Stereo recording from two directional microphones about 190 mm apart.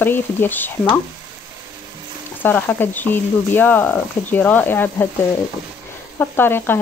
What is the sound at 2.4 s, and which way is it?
Speech, 10° left (ahead or behind).